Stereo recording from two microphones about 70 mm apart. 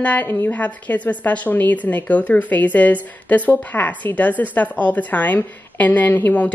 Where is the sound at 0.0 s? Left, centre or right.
Left.